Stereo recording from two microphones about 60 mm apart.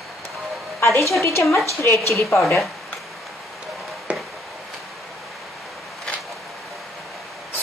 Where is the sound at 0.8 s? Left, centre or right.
Left.